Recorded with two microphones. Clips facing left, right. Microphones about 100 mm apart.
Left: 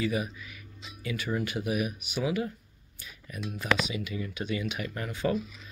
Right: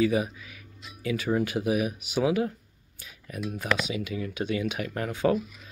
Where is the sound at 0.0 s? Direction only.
90° right.